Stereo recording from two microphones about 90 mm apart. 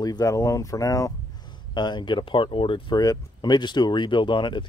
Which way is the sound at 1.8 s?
60° left (ahead or behind).